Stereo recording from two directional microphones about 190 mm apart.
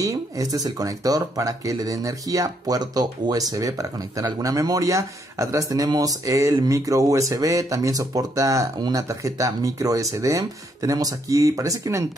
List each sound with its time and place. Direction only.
0.0 s speech: 20° right (ahead or behind)